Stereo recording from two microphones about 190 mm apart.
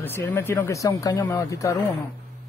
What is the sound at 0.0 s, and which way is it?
Speech, 10° left (ahead or behind).